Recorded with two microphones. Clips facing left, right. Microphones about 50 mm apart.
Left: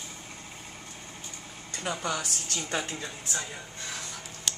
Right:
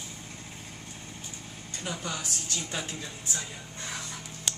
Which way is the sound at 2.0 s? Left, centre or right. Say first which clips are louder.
Left 4 dB; left.